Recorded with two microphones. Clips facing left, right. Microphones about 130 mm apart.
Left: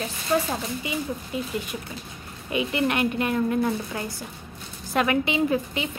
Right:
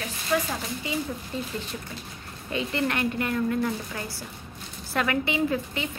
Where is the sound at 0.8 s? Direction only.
15° left (ahead or behind).